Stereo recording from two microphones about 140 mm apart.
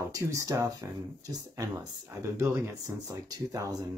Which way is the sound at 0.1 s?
25° right (ahead or behind).